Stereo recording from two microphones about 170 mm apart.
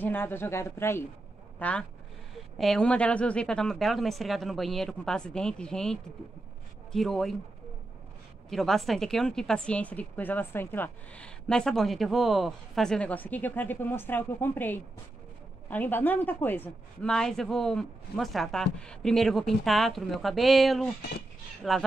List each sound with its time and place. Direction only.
0.0 s a woman's voice: 10° left (ahead or behind)
8.5 s a woman's voice: centre (ahead or behind)